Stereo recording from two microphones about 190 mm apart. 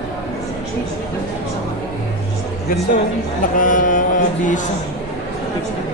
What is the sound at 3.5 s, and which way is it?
Mantra, 45° left (ahead or behind).